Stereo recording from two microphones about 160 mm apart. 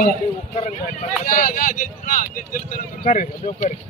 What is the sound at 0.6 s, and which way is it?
Speech, 50° left (ahead or behind).